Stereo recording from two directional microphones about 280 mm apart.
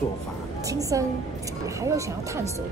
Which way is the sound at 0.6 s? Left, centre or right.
Centre.